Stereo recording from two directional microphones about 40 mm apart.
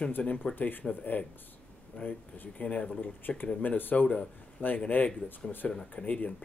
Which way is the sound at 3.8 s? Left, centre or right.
Left.